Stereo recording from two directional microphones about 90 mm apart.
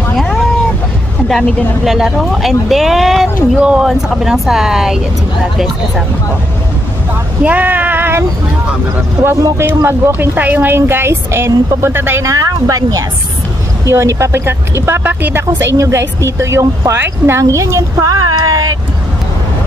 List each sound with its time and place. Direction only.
0.1 s cat: 5° left (ahead or behind)
1.9 s speech: 5° right (ahead or behind)
7.4 s speech: 20° right (ahead or behind)
12.3 s speech: 40° right (ahead or behind); by 15.4 s 20° right (ahead or behind)
15.5 s speech: 40° right (ahead or behind)